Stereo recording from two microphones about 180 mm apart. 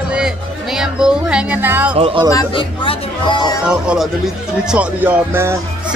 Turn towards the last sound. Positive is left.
turn(degrees=-15)  # may be behind; listen again after turning